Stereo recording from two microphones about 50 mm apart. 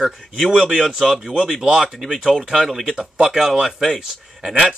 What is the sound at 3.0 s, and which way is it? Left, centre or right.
Speech, right.